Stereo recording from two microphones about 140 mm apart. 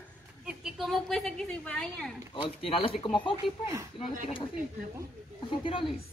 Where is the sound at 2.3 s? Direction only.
40° left (ahead or behind).